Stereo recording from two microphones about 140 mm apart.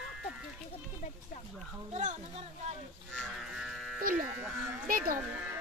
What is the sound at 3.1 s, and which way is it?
Livestock, 5° left (ahead or behind).